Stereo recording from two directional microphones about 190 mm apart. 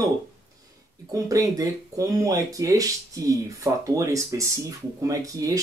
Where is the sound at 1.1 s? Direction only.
20° right (ahead or behind).